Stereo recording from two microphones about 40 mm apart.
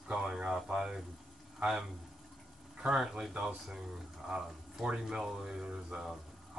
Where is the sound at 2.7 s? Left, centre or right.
Right.